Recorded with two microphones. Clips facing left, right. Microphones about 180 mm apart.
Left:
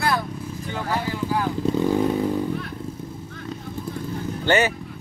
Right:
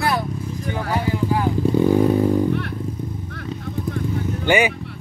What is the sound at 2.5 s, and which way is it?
Vehicle, 70° right (ahead or behind).